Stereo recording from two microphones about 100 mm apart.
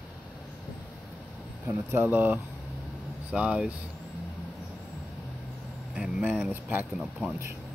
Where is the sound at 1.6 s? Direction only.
20° right (ahead or behind).